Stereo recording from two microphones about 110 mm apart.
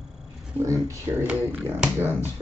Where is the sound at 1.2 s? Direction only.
15° right (ahead or behind).